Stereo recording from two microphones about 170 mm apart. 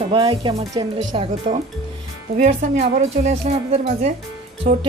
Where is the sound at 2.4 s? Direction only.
45° right (ahead or behind).